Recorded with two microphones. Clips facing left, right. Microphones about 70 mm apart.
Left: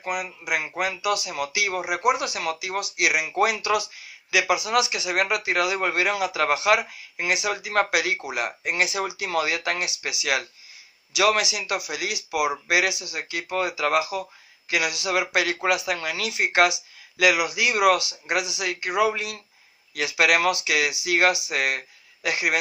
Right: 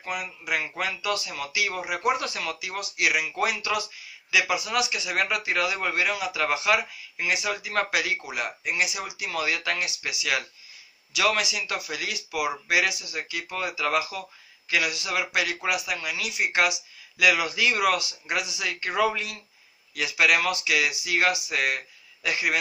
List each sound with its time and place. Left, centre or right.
0.0 s speech: left
11.1 s speech: left
17.4 s speech: centre
20.0 s speech: left